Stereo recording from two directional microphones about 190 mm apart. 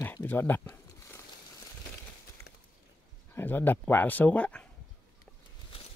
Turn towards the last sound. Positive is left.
turn(degrees=5)  # may be behind; listen again after turning